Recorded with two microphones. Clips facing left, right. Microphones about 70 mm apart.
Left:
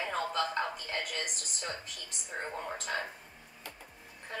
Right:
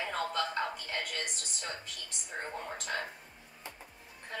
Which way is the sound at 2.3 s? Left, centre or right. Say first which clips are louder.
Left 1 dB; centre.